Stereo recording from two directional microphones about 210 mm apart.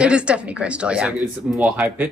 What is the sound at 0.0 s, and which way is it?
Speech, 5° right (ahead or behind).